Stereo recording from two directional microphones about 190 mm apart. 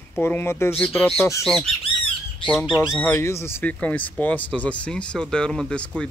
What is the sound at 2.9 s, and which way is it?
Speech, 10° left (ahead or behind).